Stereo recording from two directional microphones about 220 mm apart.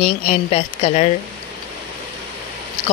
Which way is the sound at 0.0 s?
25° left (ahead or behind).